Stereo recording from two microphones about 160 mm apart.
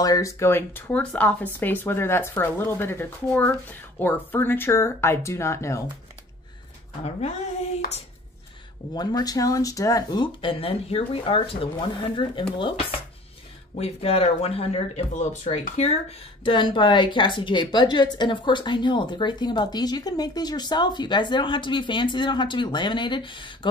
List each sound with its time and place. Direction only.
0.0 s speech: 20° left (ahead or behind)
8.9 s a woman's voice: 25° left (ahead or behind); by 16.0 s 45° left (ahead or behind)
16.4 s a woman's voice: 30° left (ahead or behind)